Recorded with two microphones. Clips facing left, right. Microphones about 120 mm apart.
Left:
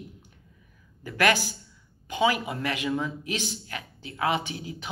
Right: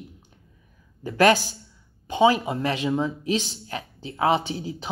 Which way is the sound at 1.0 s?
30° right (ahead or behind).